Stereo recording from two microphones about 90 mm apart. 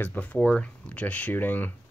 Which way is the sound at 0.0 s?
20° left (ahead or behind).